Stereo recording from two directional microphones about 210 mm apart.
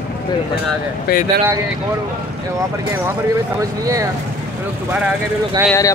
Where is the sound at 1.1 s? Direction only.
45° left (ahead or behind).